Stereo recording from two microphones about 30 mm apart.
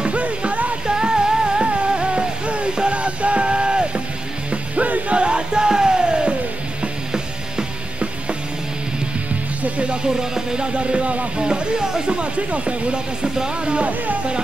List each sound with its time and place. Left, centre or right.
0.0 s music: right
0.8 s music: right
5.1 s music: right
10.0 s music: right
10.8 s speech: right
11.3 s speech: right
12.1 s speech: right
12.9 s speech: right